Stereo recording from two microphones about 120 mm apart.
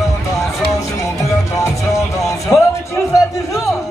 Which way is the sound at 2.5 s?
20° left (ahead or behind).